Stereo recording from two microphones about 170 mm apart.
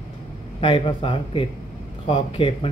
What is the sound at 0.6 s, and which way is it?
Speech, 30° left (ahead or behind).